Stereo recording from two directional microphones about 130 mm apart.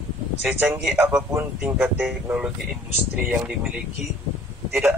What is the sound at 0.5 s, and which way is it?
Speech, 15° right (ahead or behind).